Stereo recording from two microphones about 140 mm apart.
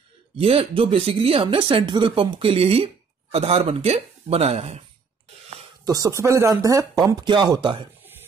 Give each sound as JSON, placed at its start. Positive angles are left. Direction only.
{"t": 0.4, "sound": "speech", "side_deg": -40}
{"t": 5.9, "sound": "speech", "side_deg": -25}